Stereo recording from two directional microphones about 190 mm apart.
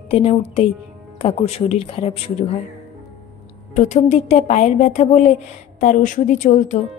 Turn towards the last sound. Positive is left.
turn(degrees=40)  # may be behind; listen again after turning